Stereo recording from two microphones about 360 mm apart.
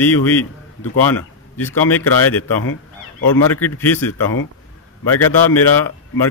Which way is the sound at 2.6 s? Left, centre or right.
Left.